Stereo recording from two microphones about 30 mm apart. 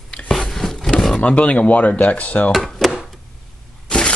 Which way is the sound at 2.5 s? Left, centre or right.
Centre.